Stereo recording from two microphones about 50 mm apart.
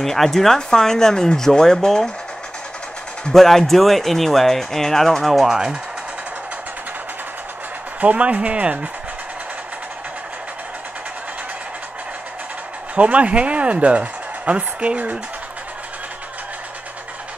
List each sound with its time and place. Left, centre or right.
0.0 s speech: centre
3.3 s speech: centre
5.5 s speech: centre
8.0 s speech: right
12.9 s speech: right